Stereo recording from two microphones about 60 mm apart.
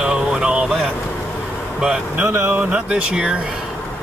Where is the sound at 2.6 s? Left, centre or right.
Centre.